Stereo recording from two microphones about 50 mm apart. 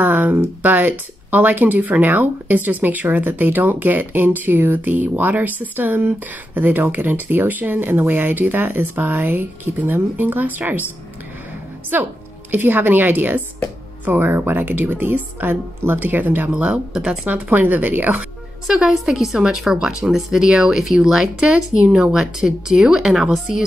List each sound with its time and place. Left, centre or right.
0.0 s speech: right
11.9 s a woman's voice: right
16.5 s speech: right
17.3 s speech: right
18.7 s speech: centre